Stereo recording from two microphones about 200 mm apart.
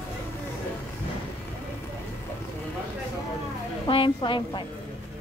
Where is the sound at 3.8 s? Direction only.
25° left (ahead or behind).